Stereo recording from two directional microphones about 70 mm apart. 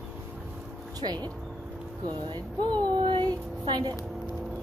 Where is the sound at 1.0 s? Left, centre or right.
Right.